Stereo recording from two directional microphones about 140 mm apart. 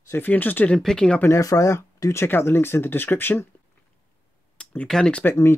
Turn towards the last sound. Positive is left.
turn(degrees=5)  # may be behind; listen again after turning